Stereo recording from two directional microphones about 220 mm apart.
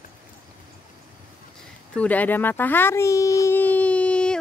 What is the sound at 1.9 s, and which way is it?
A child's voice, 5° left (ahead or behind).